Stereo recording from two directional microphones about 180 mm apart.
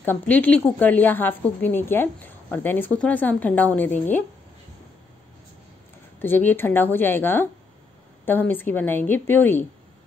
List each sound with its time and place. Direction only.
0.0 s a woman's voice: 10° left (ahead or behind)
6.1 s a woman's voice: 10° left (ahead or behind)